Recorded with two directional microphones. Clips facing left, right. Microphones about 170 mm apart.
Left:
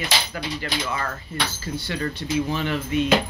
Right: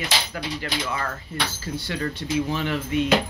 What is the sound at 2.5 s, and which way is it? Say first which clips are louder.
Speech: left 1 dB; 5° right (ahead or behind).